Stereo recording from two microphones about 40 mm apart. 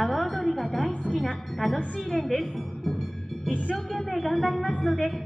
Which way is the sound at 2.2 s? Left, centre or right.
Centre.